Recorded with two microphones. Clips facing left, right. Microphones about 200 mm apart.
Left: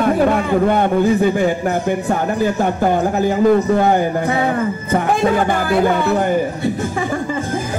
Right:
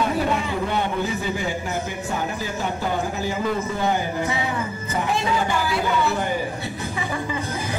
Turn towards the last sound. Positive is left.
turn(degrees=50)  # may be behind; listen again after turning